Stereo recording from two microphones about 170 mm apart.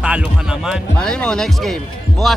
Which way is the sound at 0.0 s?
5° right (ahead or behind).